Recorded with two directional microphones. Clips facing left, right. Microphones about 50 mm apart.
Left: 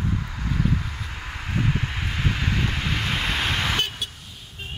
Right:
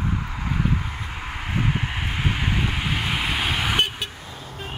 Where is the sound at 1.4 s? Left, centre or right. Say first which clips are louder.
Even; right.